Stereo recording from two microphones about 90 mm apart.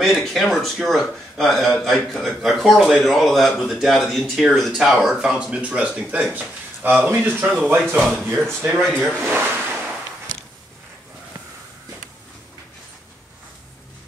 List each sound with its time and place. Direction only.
0.0 s a man's voice: centre (ahead or behind); by 7.4 s 20° right (ahead or behind)
7.4 s a man's voice: 10° right (ahead or behind)
9.2 s a sound: 25° right (ahead or behind)